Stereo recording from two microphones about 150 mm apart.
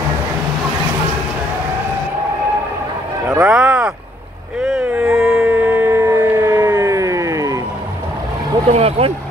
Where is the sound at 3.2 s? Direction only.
10° right (ahead or behind).